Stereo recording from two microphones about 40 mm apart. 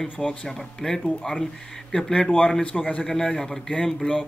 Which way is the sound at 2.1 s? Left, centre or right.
Left.